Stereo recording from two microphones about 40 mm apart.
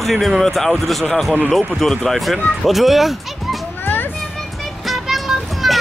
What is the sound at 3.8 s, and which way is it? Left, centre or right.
Children playing, left.